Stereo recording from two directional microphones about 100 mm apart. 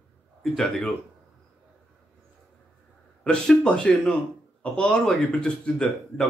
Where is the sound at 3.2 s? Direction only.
10° left (ahead or behind).